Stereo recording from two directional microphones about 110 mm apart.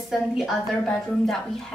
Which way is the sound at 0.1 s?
Centre (ahead or behind).